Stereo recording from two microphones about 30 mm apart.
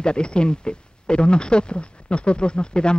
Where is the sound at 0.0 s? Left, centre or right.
Left.